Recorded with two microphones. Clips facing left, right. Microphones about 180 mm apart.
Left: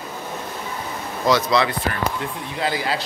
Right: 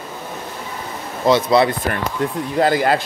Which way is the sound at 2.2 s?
45° right (ahead or behind).